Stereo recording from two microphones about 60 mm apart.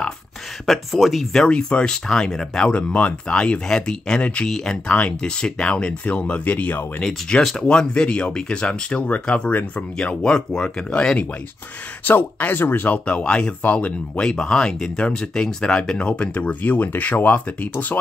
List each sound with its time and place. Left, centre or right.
0.7 s speech: centre
1.4 s speech: centre
2.7 s speech: left
4.8 s speech: left
7.0 s speech: centre; by 9.8 s left
9.9 s speech: centre
12.0 s speech: left
12.9 s speech: left